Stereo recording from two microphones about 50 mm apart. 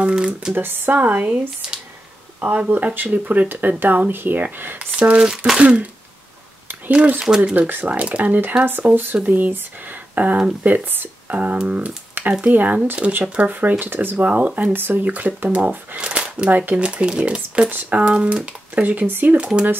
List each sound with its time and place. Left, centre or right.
0.0 s speech: centre
0.6 s speech: right
2.4 s speech: right
4.9 s speech: right
6.7 s a sound: right
7.2 s speech: centre
7.5 s speech: right
8.9 s speech: right
11.6 s speech: right
14.1 s speech: right
16.0 s speech: right
17.6 s speech: right
18.0 s speech: right
19.3 s speech: right